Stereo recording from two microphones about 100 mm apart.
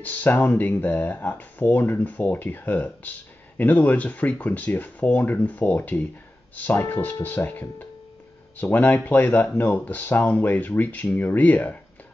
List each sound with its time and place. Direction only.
0.0 s speech: 20° left (ahead or behind)